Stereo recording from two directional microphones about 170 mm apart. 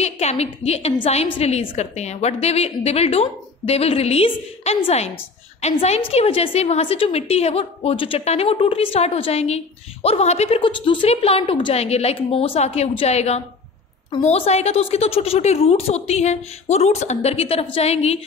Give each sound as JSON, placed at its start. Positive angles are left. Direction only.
{"t": 0.0, "sound": "a woman's voice", "side_deg": 40}